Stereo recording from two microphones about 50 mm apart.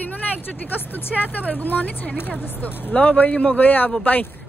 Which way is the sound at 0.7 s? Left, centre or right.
Left.